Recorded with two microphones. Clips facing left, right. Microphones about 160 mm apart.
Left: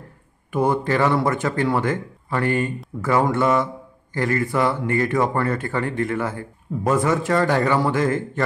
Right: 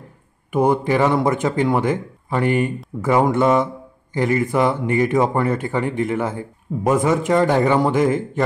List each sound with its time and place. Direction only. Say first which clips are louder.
0.5 s speech: right 3 dB; 15° right (ahead or behind)